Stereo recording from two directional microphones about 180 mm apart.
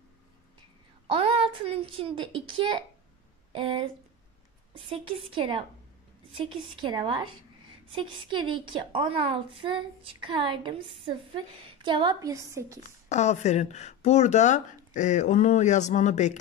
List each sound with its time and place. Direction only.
1.0 s a child's voice: 30° right (ahead or behind)
13.1 s speech: 40° left (ahead or behind)